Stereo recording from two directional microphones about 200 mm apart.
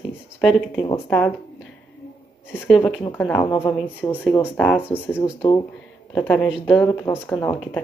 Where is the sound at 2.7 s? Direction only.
Centre (ahead or behind).